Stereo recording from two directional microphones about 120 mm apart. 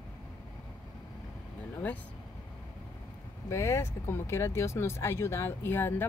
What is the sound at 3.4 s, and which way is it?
Speech, 25° left (ahead or behind).